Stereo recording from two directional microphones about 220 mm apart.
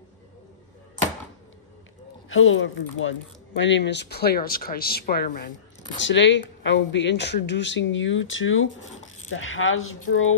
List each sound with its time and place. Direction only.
2.2 s speech: 65° left (ahead or behind); by 5.5 s 45° left (ahead or behind)
5.9 s a woman's voice: 55° left (ahead or behind)